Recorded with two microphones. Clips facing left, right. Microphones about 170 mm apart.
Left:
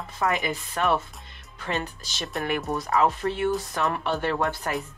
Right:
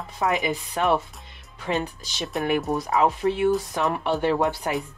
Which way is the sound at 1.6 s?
Centre (ahead or behind).